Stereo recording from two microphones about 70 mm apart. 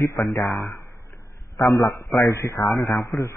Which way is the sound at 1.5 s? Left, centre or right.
Left.